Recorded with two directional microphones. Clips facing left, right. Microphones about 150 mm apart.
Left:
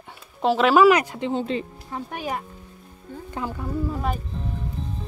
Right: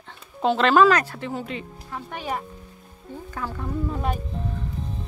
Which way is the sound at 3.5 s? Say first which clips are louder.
Even; 5° left (ahead or behind).